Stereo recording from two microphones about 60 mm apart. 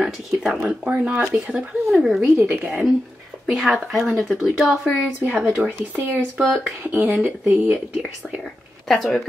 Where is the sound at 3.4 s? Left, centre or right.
Centre.